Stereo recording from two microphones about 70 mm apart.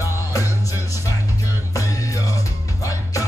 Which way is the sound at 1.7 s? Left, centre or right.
Left.